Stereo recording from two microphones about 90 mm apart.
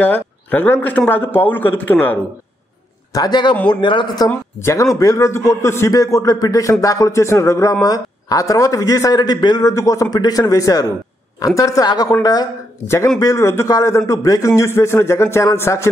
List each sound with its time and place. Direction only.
0.0 s a man's voice: 20° left (ahead or behind)
3.1 s a woman's voice: 50° left (ahead or behind)
4.6 s a man's voice: 35° left (ahead or behind)
7.8 s a man's voice: 45° left (ahead or behind)
9.7 s a man's voice: 40° left (ahead or behind)
12.8 s a man's voice: 30° left (ahead or behind)